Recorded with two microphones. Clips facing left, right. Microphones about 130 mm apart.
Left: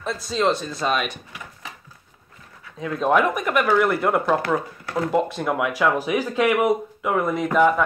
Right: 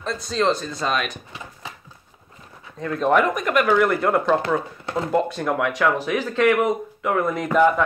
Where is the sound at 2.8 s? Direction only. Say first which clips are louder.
Right 1 dB; 5° left (ahead or behind).